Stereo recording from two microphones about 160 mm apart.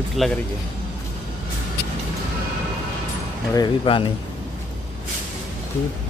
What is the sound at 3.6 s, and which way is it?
Speech, 30° left (ahead or behind).